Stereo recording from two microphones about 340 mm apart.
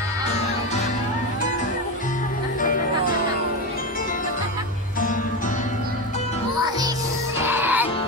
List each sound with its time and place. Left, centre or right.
2.6 s music: left
7.4 s music: centre